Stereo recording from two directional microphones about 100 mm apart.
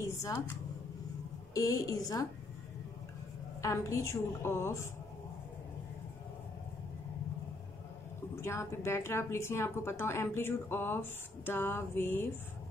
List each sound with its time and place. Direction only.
0.0 s a sound: 25° left (ahead or behind)
1.5 s a woman's voice: 35° left (ahead or behind)
3.6 s a woman's voice: 30° left (ahead or behind)
8.4 s a woman's voice: 25° left (ahead or behind)